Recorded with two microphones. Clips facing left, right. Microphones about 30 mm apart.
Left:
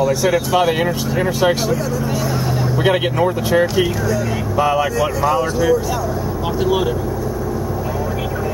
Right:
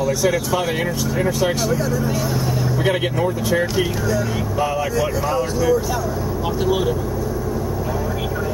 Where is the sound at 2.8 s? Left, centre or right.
Left.